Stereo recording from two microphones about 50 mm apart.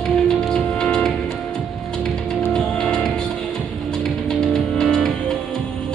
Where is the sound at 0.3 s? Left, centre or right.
Centre.